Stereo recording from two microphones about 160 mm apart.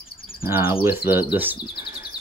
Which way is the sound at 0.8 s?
10° right (ahead or behind).